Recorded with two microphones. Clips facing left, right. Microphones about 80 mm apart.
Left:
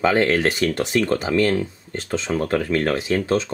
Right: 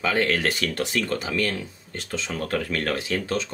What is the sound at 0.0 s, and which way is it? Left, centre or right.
Speech, left.